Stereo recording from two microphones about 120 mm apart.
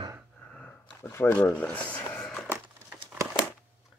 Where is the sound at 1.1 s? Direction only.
20° left (ahead or behind).